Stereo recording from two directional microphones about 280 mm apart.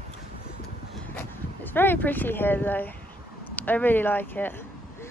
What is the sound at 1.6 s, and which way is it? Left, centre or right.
Speech, centre.